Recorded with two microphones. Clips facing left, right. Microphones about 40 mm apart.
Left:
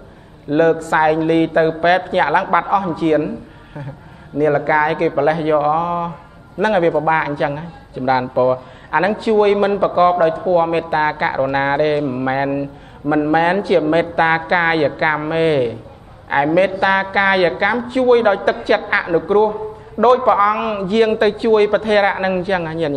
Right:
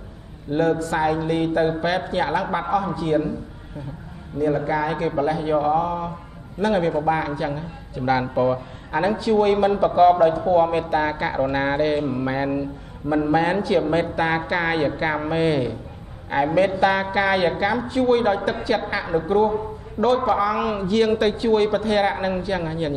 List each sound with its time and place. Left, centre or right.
0.5 s a man's voice: left
8.0 s speech: left
9.0 s a man's voice: left